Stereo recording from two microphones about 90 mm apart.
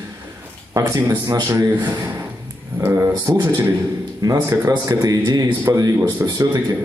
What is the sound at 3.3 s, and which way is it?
A man's voice, 45° right (ahead or behind).